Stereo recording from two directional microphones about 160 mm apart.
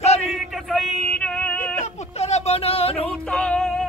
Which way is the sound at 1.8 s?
40° left (ahead or behind).